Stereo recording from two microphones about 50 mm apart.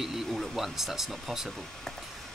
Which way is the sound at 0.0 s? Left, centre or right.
Centre.